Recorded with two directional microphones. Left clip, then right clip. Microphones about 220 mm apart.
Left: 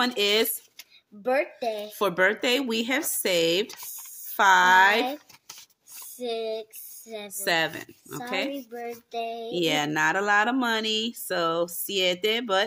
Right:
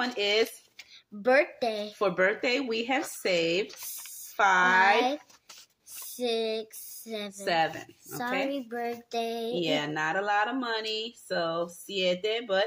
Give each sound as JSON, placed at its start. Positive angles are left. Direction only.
{"t": 0.0, "sound": "speech", "side_deg": 40}
{"t": 1.2, "sound": "child singing", "side_deg": -20}
{"t": 2.0, "sound": "speech", "side_deg": 35}
{"t": 6.1, "sound": "a sound", "side_deg": -20}
{"t": 7.4, "sound": "speech", "side_deg": 40}
{"t": 8.6, "sound": "child singing", "side_deg": -25}
{"t": 9.6, "sound": "speech", "side_deg": 50}